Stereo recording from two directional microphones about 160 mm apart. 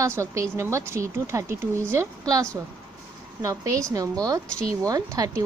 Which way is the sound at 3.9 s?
20° right (ahead or behind).